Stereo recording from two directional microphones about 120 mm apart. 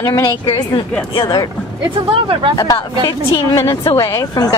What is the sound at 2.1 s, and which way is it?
Speech, 45° right (ahead or behind).